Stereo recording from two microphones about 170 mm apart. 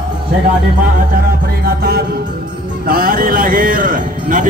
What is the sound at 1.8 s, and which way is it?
Music, 65° right (ahead or behind).